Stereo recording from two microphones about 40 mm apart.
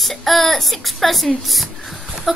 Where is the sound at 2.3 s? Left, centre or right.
Centre.